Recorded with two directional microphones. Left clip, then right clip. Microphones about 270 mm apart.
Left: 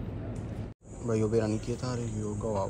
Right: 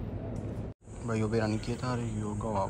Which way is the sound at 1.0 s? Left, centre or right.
Centre.